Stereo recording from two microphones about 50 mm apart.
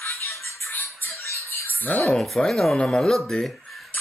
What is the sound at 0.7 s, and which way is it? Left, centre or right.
Music, left.